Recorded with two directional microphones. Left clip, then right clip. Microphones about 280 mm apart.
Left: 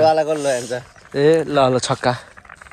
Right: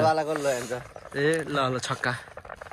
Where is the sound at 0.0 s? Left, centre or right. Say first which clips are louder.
Left 8 dB; left.